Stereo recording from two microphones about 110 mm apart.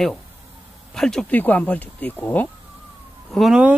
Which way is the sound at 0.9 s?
5° left (ahead or behind).